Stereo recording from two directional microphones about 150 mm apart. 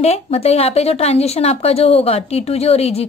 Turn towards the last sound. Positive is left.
turn(degrees=40)  # may be behind; listen again after turning